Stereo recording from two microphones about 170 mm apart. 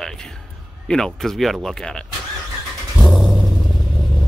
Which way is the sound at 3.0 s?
Centre (ahead or behind).